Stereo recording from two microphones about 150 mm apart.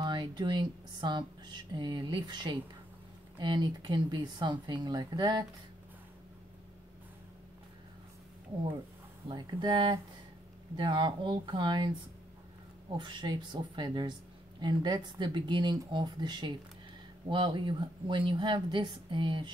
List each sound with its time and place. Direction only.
0.0 s speech: 30° right (ahead or behind)
9.3 s speech: 30° right (ahead or behind)
12.9 s speech: 30° right (ahead or behind)